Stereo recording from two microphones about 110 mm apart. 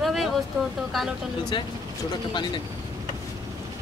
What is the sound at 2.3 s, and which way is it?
Speech, 45° left (ahead or behind).